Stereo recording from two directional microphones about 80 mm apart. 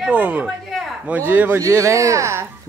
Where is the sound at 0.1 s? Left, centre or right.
Centre.